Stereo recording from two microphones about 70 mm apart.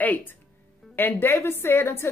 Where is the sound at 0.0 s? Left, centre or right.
Left.